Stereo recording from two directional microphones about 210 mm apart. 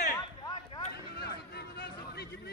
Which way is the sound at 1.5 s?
50° left (ahead or behind).